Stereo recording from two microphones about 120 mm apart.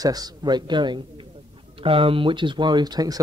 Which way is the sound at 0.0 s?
30° right (ahead or behind).